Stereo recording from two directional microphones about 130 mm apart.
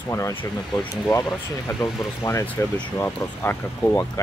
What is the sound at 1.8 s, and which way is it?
Speech, 25° left (ahead or behind).